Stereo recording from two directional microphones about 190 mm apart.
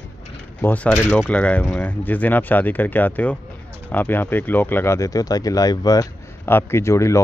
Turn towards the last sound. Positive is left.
turn(degrees=15)  # may be behind; listen again after turning